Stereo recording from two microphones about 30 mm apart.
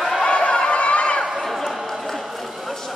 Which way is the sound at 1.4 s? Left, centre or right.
Centre.